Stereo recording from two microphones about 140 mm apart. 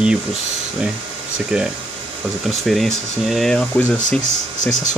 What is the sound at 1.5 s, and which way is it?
Speech, 5° right (ahead or behind).